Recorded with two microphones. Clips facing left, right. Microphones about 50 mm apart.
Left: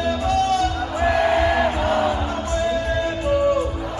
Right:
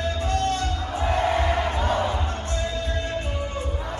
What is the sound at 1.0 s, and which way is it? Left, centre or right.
Crowd, left.